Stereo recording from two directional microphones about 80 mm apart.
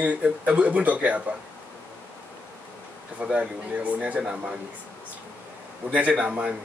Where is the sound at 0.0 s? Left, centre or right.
Centre.